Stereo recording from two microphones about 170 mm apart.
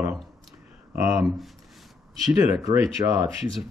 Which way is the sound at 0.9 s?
15° right (ahead or behind).